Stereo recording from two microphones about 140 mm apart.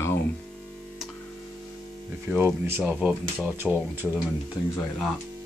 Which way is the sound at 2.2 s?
15° right (ahead or behind).